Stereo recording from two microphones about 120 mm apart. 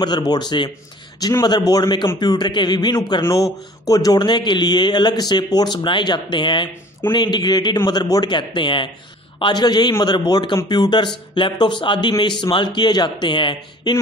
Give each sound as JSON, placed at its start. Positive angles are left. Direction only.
{"t": 0.3, "sound": "a man's voice", "side_deg": 35}